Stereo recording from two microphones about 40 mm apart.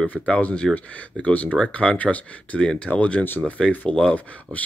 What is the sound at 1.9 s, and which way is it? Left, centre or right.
Speech, left.